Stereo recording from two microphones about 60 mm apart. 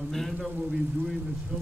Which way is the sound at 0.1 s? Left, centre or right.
Centre.